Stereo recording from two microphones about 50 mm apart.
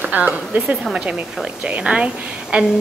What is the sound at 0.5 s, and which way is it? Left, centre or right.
Speech, right.